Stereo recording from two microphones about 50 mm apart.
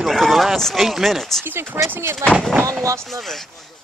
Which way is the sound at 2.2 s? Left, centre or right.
Right.